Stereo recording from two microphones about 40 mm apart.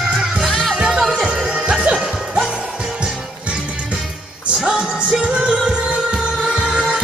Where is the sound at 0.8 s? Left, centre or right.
Centre.